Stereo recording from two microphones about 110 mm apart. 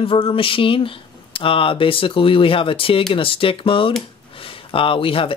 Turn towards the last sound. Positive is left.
turn(degrees=55)  # may be behind; listen again after turning